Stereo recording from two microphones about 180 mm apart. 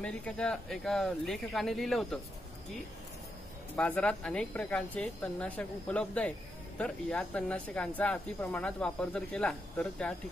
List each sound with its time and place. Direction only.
0.0 s speech: 5° left (ahead or behind)
3.7 s speech: 5° left (ahead or behind)